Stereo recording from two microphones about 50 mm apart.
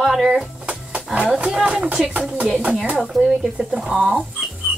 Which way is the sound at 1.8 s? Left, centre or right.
Right.